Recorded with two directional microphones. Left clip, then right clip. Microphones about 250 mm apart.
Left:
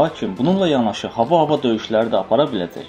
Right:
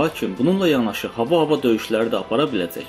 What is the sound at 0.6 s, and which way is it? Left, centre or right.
Speech, centre.